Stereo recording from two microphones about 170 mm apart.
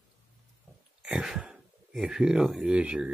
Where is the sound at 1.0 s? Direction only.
5° right (ahead or behind).